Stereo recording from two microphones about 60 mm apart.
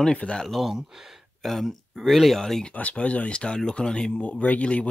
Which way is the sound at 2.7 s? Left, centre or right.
Left.